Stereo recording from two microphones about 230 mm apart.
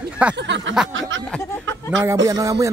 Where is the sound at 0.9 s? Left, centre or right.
Right.